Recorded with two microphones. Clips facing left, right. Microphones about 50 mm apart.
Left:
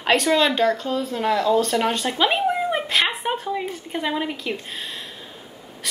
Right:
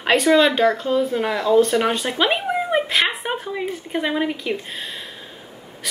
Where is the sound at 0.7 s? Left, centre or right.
Centre.